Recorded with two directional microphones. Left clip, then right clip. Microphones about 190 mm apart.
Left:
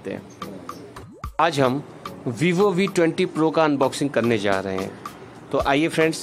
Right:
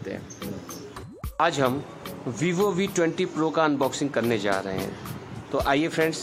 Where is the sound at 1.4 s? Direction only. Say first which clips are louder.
Left 3 dB; 30° left (ahead or behind).